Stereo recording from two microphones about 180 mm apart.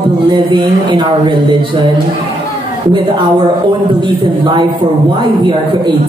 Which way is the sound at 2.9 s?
25° right (ahead or behind).